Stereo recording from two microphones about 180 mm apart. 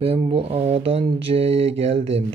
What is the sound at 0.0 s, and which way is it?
Speech, 30° right (ahead or behind).